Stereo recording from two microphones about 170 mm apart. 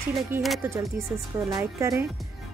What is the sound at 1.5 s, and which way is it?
Speech, 20° right (ahead or behind).